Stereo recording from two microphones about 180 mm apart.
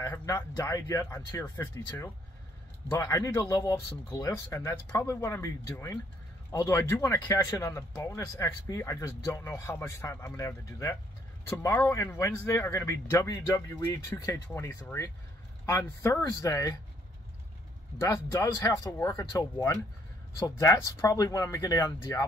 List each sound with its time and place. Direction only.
0.0 s speech: 15° left (ahead or behind)
2.9 s speech: 15° left (ahead or behind)
17.9 s speech: 15° left (ahead or behind)